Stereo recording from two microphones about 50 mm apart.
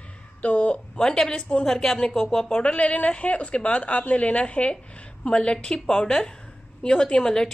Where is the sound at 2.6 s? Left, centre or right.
Left.